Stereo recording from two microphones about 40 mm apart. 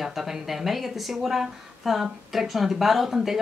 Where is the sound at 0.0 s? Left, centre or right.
Centre.